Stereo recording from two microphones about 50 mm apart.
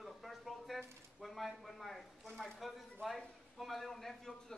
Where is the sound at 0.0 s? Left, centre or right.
Centre.